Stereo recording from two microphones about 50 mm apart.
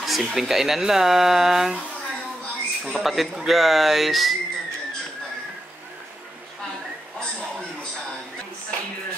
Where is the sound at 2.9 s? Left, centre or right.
Centre.